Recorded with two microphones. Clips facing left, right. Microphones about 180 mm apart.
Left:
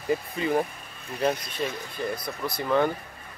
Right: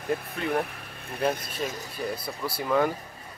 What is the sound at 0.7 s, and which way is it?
Vehicle, 65° right (ahead or behind).